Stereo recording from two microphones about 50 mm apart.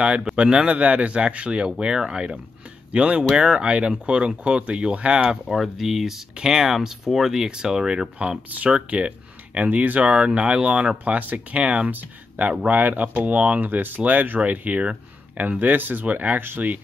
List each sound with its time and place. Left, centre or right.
0.0 s speech: centre
5.5 s speech: centre; by 11.9 s right
11.9 s speech: right